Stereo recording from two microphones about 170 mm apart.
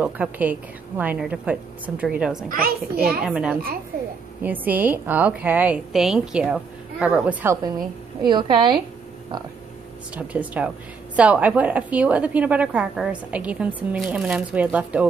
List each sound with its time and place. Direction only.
0.0 s a woman's voice: 10° right (ahead or behind)
2.5 s a child's voice: 60° right (ahead or behind)
3.3 s a woman's voice: 5° right (ahead or behind)
8.2 s a woman's voice: 25° right (ahead or behind)
10.1 s a woman's voice: 10° right (ahead or behind)